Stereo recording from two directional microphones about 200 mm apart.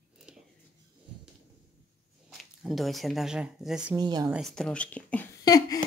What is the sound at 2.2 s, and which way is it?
Speech, centre (ahead or behind).